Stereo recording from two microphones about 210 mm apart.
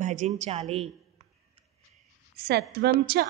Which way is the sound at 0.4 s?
30° right (ahead or behind).